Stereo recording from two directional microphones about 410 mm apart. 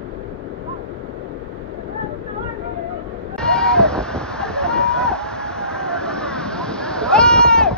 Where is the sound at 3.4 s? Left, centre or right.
Centre.